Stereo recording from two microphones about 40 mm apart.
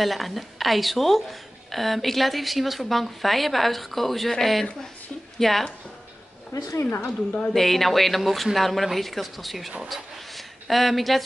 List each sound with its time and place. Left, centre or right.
0.0 s a woman's voice: centre
7.1 s a woman's voice: left
7.5 s a woman's voice: centre